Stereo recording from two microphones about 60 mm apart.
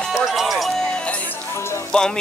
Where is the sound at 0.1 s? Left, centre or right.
Centre.